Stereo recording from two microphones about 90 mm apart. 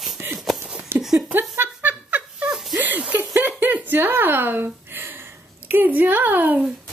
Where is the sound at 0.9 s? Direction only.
25° right (ahead or behind).